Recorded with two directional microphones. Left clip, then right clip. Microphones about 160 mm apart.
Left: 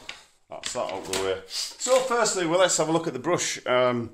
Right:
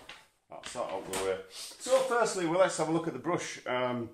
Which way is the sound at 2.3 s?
35° left (ahead or behind).